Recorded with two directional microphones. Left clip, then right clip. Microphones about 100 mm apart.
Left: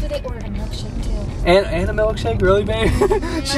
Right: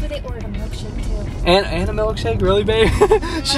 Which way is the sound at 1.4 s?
15° right (ahead or behind).